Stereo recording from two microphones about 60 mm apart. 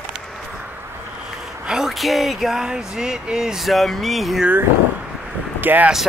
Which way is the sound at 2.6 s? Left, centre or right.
Centre.